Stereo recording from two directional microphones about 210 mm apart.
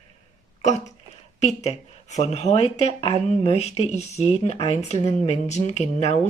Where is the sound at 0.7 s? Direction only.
35° left (ahead or behind).